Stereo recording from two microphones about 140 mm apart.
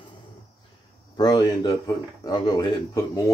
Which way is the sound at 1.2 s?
30° left (ahead or behind).